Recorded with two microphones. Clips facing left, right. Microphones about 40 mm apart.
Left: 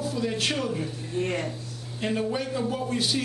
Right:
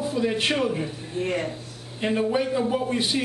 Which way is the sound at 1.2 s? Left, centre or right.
Centre.